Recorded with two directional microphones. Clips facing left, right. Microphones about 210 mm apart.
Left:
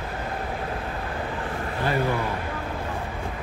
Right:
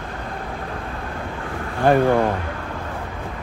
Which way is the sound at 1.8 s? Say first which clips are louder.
Right 10 dB; 55° right (ahead or behind).